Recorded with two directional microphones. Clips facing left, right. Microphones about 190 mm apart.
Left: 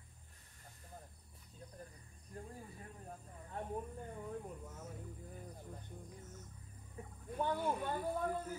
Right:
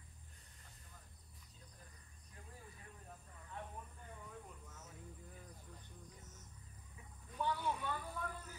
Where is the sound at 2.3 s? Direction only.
45° left (ahead or behind).